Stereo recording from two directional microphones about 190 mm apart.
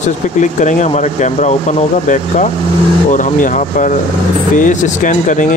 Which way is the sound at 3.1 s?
40° left (ahead or behind).